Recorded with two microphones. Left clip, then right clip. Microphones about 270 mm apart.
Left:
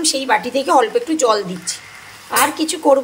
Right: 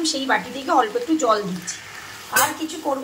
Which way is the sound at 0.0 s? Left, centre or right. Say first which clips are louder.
Left 5 dB; left.